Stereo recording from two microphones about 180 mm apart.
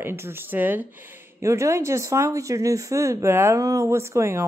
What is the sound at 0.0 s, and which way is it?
Speech, 15° right (ahead or behind).